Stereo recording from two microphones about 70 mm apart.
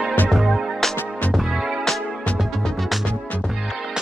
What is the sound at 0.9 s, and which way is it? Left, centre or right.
Music, left.